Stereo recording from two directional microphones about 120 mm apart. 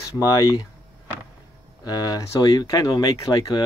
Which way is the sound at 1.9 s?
35° left (ahead or behind).